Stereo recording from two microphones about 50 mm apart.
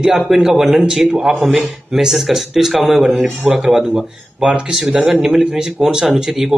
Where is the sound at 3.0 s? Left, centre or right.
Centre.